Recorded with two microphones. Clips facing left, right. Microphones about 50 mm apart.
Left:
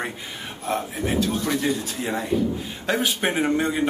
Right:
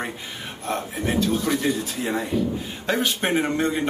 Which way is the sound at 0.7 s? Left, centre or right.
Centre.